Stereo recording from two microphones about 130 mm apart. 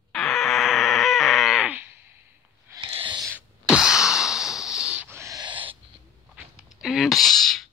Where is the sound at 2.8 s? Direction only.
40° right (ahead or behind).